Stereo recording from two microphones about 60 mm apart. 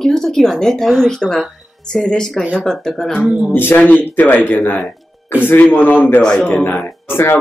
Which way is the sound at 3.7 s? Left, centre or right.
Left.